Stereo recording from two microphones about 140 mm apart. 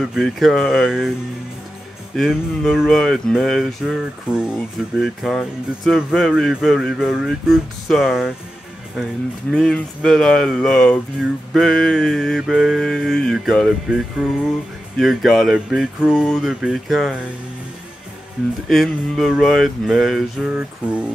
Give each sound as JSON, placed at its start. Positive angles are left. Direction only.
{"t": 0.0, "sound": "speech", "side_deg": 0}
{"t": 2.1, "sound": "speech", "side_deg": 0}
{"t": 9.5, "sound": "speech", "side_deg": 5}
{"t": 18.7, "sound": "speech", "side_deg": 0}